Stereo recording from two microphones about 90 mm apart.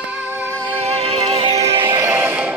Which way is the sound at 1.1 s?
90° right.